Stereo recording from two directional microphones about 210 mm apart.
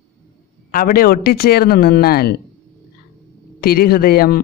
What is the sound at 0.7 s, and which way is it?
A man's voice, 45° left (ahead or behind).